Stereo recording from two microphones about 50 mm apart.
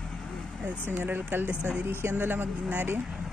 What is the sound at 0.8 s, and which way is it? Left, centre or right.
Speech, right.